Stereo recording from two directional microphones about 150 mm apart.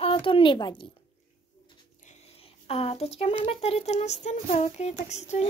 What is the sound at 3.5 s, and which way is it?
Speech, 40° left (ahead or behind).